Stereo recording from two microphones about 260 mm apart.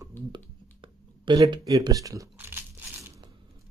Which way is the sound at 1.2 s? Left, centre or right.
Centre.